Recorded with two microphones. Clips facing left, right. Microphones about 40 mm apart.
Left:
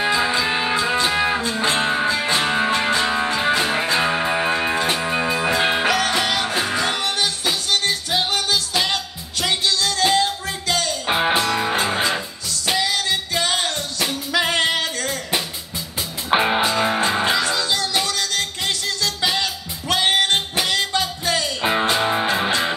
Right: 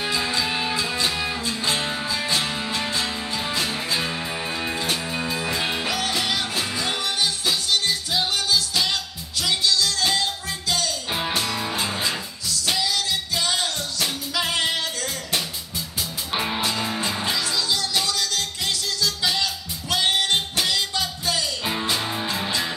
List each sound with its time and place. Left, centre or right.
0.0 s music: left
16.3 s music: left